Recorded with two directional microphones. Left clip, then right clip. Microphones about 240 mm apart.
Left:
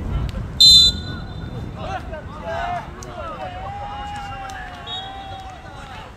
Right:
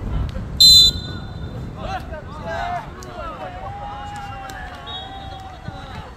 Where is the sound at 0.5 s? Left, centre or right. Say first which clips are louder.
Even; centre.